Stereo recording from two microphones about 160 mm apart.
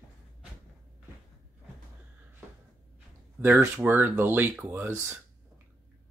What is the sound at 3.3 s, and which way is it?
Speech, 10° right (ahead or behind).